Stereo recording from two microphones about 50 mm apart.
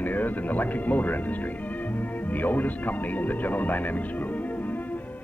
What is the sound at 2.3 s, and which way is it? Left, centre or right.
A man's voice, left.